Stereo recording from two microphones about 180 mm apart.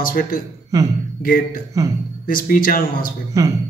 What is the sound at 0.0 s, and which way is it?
A man's voice, 55° left (ahead or behind).